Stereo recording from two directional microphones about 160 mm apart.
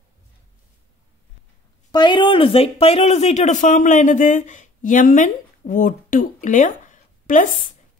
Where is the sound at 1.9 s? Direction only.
30° left (ahead or behind); by 7.5 s 55° left (ahead or behind).